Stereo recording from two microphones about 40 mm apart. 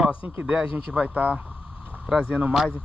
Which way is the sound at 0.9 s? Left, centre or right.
Right.